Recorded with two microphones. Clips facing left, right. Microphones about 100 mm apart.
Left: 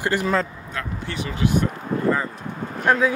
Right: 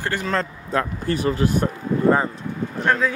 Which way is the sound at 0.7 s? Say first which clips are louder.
Right 8 dB; 40° right (ahead or behind).